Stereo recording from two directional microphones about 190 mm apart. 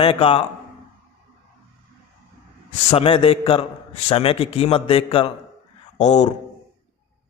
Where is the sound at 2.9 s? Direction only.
30° left (ahead or behind).